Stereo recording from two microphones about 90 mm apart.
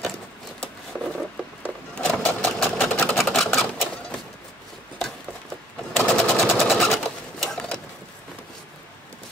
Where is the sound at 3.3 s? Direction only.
5° left (ahead or behind).